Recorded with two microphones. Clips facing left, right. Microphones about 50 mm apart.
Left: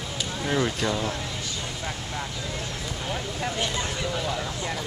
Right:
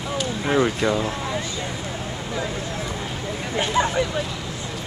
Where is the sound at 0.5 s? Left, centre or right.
Right.